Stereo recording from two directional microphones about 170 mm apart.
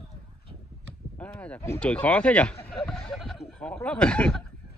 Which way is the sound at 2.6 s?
35° left (ahead or behind).